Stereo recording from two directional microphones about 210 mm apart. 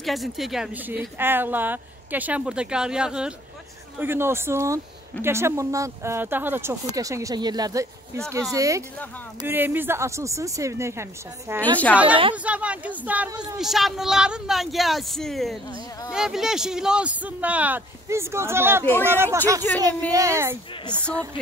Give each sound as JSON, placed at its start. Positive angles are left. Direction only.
{"t": 0.0, "sound": "speech", "side_deg": 0}
{"t": 11.6, "sound": "a woman's voice", "side_deg": 5}
{"t": 12.4, "sound": "speech", "side_deg": -5}
{"t": 19.7, "sound": "a woman's voice", "side_deg": 10}
{"t": 20.1, "sound": "speech", "side_deg": -15}